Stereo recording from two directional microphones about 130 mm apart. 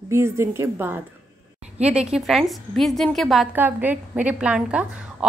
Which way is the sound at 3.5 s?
15° right (ahead or behind).